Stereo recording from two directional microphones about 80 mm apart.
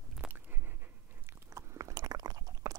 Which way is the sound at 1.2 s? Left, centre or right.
Right.